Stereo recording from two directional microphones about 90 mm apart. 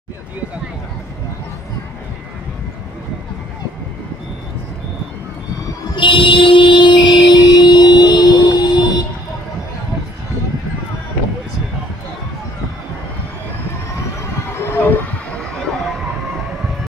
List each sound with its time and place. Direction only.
5.9 s music: 70° left (ahead or behind); by 9.0 s 50° left (ahead or behind)
14.7 s heart sounds: 25° left (ahead or behind)
15.3 s a sound: 5° left (ahead or behind)